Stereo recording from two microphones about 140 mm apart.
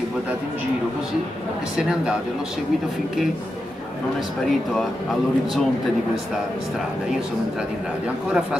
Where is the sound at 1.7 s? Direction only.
5° right (ahead or behind).